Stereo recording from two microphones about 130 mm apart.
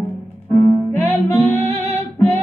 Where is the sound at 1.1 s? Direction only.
55° right (ahead or behind).